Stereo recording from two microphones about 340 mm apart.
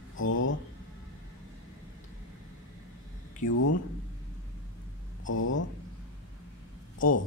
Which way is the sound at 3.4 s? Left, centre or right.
Left.